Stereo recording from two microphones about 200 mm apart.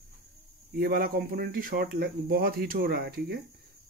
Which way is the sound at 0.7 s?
50° right (ahead or behind).